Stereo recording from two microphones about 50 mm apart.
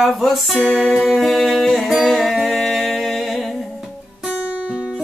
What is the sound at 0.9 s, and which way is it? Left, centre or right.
Humming, centre.